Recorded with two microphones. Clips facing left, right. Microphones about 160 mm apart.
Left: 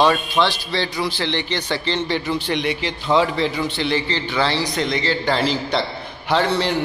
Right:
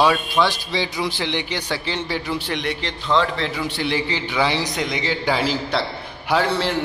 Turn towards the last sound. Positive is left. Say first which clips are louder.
# left 1 dB
turn(degrees=-5)  # may be behind; listen again after turning